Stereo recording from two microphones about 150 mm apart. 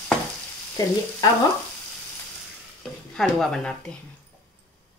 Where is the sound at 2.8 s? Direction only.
Centre (ahead or behind).